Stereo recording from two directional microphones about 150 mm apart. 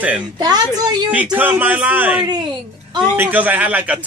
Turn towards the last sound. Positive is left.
turn(degrees=-10)  # may be behind; listen again after turning